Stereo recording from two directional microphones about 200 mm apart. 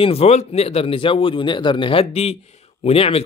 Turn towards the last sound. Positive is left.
turn(degrees=30)  # may be behind; listen again after turning